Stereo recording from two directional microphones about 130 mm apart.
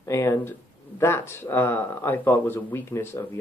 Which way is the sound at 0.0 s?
20° left (ahead or behind).